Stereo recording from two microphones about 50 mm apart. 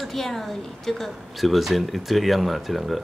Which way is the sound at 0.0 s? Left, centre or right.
Centre.